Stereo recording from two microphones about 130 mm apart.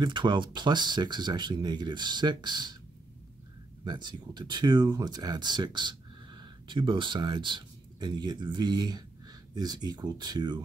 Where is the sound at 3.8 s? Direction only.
35° right (ahead or behind).